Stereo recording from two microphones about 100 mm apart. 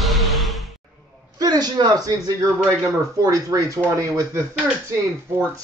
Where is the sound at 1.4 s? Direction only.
40° right (ahead or behind).